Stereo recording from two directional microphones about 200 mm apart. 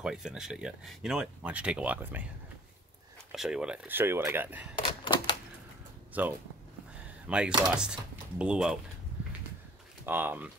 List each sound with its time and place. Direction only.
0.0 s speech: 5° right (ahead or behind)
3.3 s speech: 5° right (ahead or behind)
4.7 s typewriter: 25° left (ahead or behind)
6.1 s speech: 10° right (ahead or behind)
10.0 s speech: 10° right (ahead or behind)